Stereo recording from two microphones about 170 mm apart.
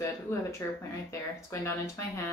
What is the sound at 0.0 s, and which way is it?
Speech, 15° left (ahead or behind).